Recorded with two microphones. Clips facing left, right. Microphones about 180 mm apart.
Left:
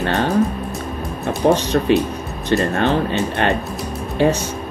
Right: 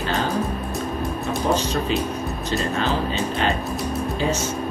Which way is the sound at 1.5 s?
70° left (ahead or behind).